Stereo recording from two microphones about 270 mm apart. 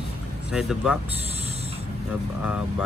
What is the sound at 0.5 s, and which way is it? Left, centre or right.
Speech, centre.